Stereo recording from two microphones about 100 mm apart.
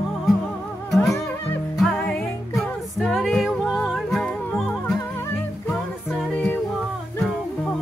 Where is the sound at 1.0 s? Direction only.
30° left (ahead or behind).